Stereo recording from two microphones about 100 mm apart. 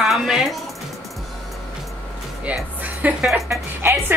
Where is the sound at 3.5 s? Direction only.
25° right (ahead or behind).